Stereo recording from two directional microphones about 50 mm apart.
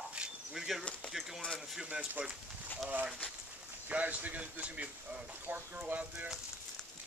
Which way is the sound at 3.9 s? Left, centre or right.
Right.